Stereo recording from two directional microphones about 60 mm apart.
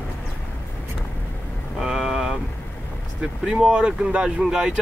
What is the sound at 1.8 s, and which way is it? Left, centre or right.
Vehicle, centre.